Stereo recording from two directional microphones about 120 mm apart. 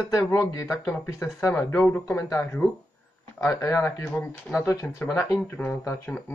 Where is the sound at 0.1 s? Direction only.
25° left (ahead or behind).